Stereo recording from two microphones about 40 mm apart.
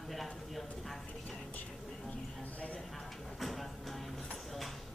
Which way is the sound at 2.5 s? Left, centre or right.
Left.